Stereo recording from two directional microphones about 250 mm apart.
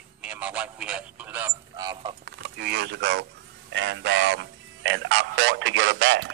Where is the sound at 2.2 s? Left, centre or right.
Right.